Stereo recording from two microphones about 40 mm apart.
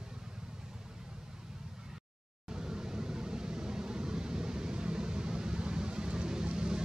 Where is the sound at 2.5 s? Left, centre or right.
Centre.